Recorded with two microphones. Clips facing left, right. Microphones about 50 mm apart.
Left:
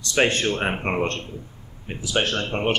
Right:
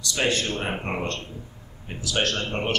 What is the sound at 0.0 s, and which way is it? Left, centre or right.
Speech, left.